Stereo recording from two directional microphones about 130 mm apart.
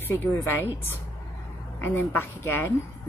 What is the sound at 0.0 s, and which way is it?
A woman's voice, 15° left (ahead or behind).